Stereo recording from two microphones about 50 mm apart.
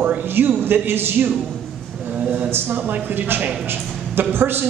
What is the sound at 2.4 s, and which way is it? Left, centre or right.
A woman's voice, right.